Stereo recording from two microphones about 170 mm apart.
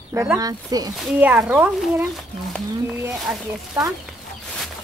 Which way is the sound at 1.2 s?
10° right (ahead or behind).